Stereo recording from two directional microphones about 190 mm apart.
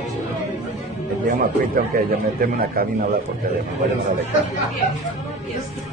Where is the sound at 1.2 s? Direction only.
45° right (ahead or behind).